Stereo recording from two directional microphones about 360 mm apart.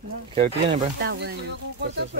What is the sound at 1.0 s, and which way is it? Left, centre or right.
Speech, right.